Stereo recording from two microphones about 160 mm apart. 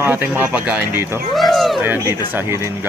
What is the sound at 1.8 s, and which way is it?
Speech, 15° right (ahead or behind).